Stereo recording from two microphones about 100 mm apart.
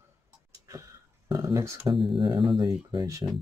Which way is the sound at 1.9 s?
55° right (ahead or behind).